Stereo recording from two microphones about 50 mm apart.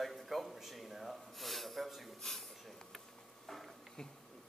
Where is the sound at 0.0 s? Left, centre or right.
Centre.